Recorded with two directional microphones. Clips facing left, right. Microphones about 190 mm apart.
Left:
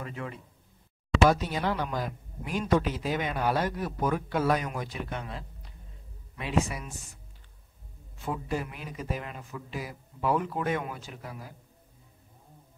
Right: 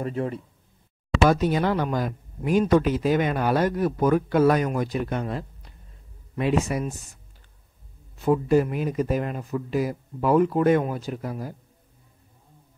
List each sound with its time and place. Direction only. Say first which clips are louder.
0.0 s speech: right 10 dB; 35° right (ahead or behind)
1.3 s speech: right 7 dB; 55° right (ahead or behind)
8.2 s speech: right 13 dB; 45° right (ahead or behind)